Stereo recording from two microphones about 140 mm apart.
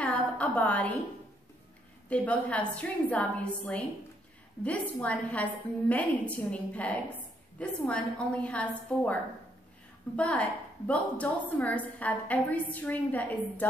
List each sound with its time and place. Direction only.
0.0 s a sound: 10° left (ahead or behind)
2.0 s a woman's voice: 10° left (ahead or behind)
5.0 s a woman's voice: 10° left (ahead or behind)